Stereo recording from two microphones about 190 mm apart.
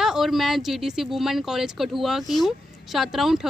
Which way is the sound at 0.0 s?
Centre (ahead or behind).